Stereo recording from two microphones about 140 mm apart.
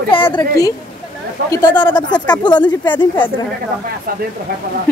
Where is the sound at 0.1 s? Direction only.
35° left (ahead or behind).